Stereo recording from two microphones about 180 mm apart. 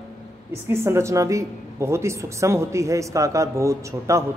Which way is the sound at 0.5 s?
15° right (ahead or behind).